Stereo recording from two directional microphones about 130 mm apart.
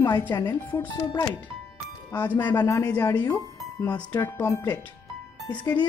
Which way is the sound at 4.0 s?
15° left (ahead or behind).